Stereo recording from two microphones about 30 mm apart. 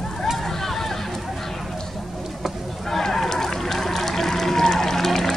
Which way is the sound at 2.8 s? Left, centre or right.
Centre.